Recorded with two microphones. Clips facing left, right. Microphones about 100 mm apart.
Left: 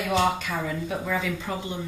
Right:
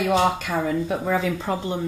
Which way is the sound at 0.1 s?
30° right (ahead or behind).